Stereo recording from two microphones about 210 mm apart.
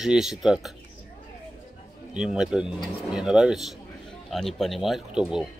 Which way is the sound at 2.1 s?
5° right (ahead or behind).